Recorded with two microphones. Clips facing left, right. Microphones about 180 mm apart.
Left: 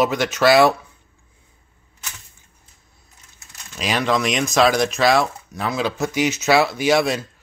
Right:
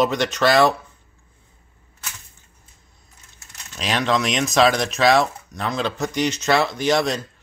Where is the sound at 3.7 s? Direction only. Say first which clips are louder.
Left 1 dB; 5° left (ahead or behind).